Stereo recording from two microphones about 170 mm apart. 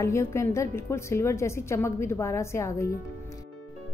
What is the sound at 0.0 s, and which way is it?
A woman's voice, 15° left (ahead or behind).